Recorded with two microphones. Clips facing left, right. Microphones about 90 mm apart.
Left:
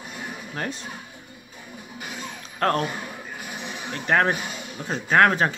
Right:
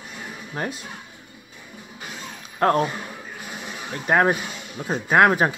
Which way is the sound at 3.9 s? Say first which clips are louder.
Right 2 dB; 15° right (ahead or behind).